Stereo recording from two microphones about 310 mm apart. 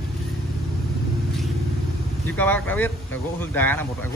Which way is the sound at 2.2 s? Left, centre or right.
Centre.